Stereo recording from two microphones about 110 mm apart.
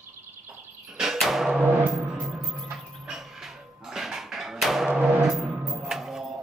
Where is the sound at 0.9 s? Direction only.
5° right (ahead or behind).